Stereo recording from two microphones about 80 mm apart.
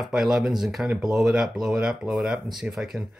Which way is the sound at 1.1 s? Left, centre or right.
Centre.